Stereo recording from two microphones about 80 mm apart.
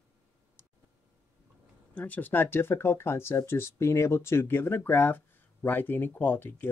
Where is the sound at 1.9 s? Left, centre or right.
Left.